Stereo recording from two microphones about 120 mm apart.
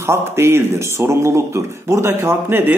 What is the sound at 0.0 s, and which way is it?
A man's voice, 25° right (ahead or behind).